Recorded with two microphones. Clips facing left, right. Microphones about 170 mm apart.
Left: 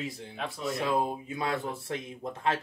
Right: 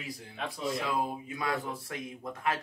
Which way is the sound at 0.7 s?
25° left (ahead or behind).